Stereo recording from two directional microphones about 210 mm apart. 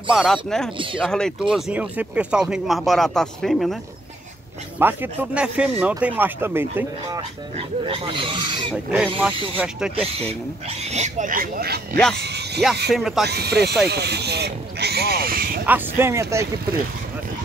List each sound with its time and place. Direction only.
0.1 s speech: centre (ahead or behind)
4.7 s speech: 10° right (ahead or behind)
7.5 s speech: 25° right (ahead or behind)
9.6 s speech: 5° right (ahead or behind)
10.0 s speech: 30° right (ahead or behind); by 12.0 s 45° right (ahead or behind)
12.2 s a sound: 50° right (ahead or behind)
12.9 s speech: centre (ahead or behind)
13.2 s speech: 50° right (ahead or behind)
15.6 s speech: 10° right (ahead or behind)